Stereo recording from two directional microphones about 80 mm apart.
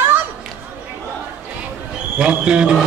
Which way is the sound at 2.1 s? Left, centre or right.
Centre.